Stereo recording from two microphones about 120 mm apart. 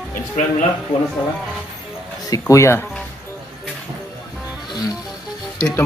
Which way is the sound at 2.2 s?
30° left (ahead or behind).